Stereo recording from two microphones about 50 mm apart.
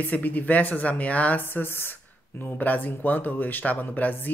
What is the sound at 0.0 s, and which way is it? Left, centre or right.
Speech, left.